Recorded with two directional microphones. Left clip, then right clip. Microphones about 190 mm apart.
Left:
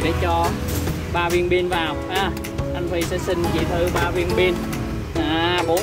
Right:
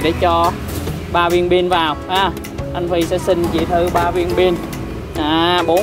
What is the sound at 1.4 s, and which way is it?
Speech, 30° right (ahead or behind).